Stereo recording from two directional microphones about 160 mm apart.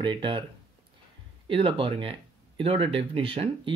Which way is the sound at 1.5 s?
35° right (ahead or behind).